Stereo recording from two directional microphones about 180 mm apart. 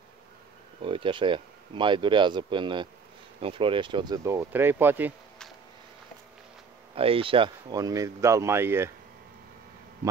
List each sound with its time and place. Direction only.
0.8 s speech: 30° right (ahead or behind); by 5.1 s 10° right (ahead or behind)
7.0 s speech: 30° right (ahead or behind); by 8.9 s 15° right (ahead or behind)